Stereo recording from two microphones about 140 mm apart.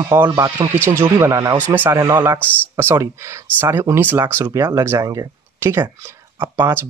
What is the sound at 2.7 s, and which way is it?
Speech, 15° right (ahead or behind).